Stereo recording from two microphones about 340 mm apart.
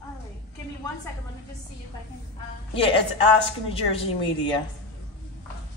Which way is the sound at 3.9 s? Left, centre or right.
Centre.